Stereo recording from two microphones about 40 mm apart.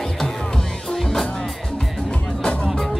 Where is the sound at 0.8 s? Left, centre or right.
Centre.